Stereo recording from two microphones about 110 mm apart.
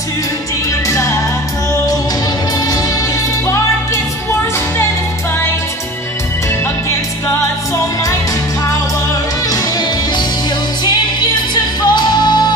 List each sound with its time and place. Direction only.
0.8 s music: 30° left (ahead or behind)
9.5 s music: 35° left (ahead or behind)
11.5 s music: 45° left (ahead or behind)